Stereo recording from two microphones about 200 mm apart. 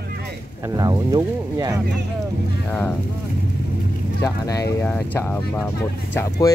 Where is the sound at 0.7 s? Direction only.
20° right (ahead or behind).